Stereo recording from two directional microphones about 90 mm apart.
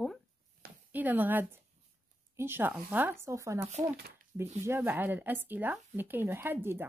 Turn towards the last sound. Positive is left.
turn(degrees=-25)  # may be behind; listen again after turning